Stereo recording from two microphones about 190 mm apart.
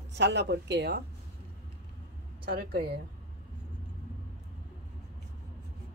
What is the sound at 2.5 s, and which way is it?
Speech, 55° right (ahead or behind).